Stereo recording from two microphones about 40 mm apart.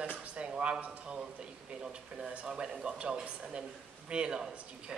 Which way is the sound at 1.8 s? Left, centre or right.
Right.